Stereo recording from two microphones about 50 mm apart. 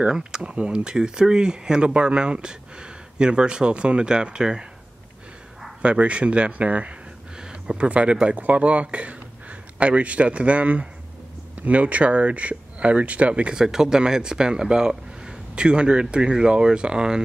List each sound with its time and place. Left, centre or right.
0.0 s speech: centre
5.8 s speech: right